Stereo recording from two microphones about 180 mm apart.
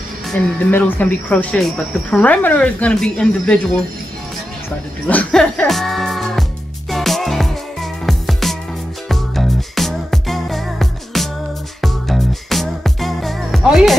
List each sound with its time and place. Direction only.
0.3 s speech: 10° left (ahead or behind)
5.0 s speech: 5° left (ahead or behind)
6.9 s music: centre (ahead or behind)